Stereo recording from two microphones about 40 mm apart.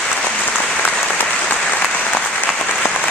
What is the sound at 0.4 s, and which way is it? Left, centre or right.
Applause, left.